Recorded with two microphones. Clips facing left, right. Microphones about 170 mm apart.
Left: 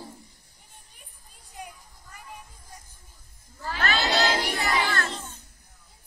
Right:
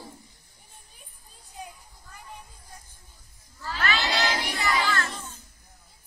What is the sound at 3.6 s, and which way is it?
Battle cry, 45° left (ahead or behind).